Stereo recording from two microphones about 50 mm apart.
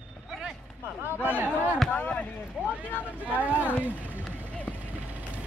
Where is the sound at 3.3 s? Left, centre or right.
Right.